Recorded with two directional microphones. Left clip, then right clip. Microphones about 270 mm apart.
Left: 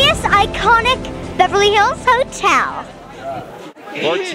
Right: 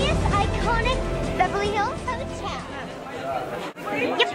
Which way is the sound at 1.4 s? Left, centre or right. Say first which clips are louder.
Left 12 dB; left.